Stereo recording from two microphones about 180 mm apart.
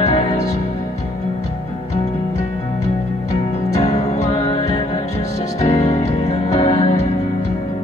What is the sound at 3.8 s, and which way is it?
Music, 40° left (ahead or behind).